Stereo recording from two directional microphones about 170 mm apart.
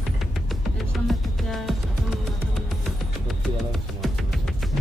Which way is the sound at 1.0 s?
Centre (ahead or behind).